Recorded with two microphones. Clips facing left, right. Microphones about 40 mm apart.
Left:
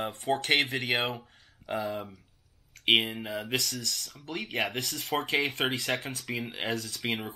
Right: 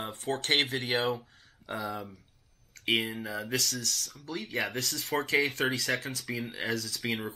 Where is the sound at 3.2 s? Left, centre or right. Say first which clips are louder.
Left 1 dB; left.